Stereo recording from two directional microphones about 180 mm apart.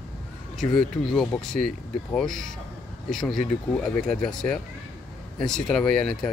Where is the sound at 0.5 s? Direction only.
Centre (ahead or behind).